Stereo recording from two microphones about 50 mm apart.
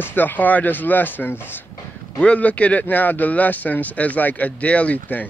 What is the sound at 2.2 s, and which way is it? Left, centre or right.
Speech, left.